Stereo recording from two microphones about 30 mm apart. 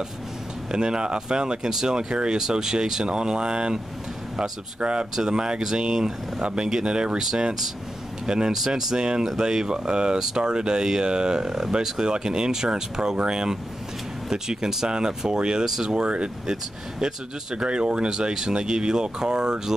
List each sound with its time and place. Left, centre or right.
0.7 s speech: right
3.1 s speech: right
6.4 s speech: right
7.2 s speech: centre